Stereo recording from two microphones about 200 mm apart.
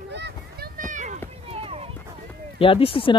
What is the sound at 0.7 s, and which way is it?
Children playing, 40° right (ahead or behind).